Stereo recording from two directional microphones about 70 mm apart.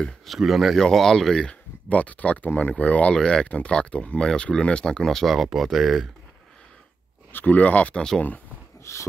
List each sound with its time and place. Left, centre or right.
0.3 s speech: centre
7.3 s speech: left
8.9 s wheeze: left